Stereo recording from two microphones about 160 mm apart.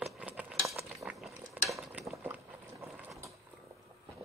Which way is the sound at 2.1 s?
15° right (ahead or behind).